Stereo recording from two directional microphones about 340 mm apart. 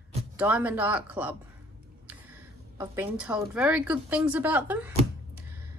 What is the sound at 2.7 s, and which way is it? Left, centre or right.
A woman's voice, centre.